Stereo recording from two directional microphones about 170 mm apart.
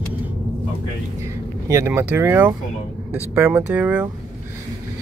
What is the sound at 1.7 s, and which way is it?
Speech, 15° right (ahead or behind).